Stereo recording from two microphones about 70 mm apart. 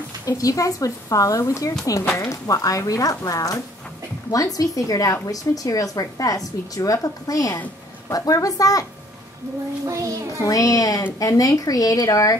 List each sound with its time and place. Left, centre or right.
0.2 s a woman's voice: left
9.8 s child singing: right
10.4 s a woman's voice: left